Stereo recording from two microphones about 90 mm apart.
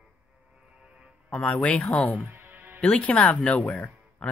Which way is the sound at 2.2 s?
20° right (ahead or behind).